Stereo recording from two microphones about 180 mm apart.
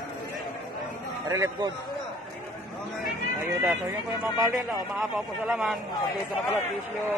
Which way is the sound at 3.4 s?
15° right (ahead or behind).